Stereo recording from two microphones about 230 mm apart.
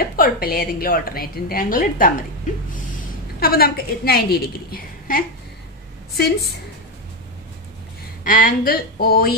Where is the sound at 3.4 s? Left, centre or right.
Left.